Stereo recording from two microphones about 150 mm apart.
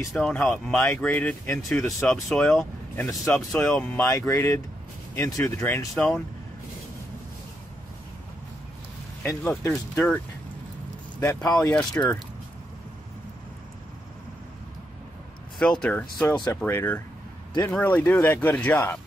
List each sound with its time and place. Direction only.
0.1 s speech: centre (ahead or behind)
9.2 s speech: 15° left (ahead or behind)
9.7 s speech: 5° left (ahead or behind)
11.1 s speech: 20° left (ahead or behind)
12.0 s speech: 15° left (ahead or behind)
15.6 s speech: 5° left (ahead or behind)